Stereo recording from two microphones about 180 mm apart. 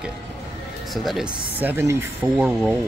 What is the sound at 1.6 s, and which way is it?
Speech, 10° right (ahead or behind).